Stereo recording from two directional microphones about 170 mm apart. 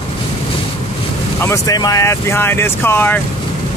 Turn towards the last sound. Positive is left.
turn(degrees=15)  # may be behind; listen again after turning